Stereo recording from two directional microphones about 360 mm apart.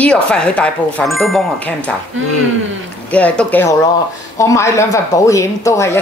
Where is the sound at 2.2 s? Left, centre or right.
Right.